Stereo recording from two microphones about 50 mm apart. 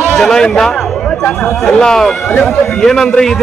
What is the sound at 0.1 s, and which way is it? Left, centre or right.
Speech, centre.